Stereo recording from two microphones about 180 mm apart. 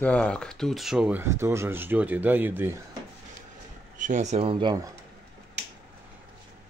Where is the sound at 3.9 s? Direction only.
45° right (ahead or behind); by 4.9 s 20° right (ahead or behind).